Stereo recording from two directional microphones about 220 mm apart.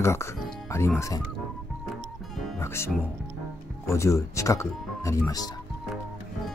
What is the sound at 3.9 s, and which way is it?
Speech, 15° left (ahead or behind).